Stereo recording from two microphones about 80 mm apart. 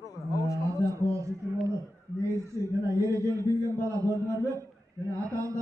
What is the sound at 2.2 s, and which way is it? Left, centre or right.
A man's voice, right.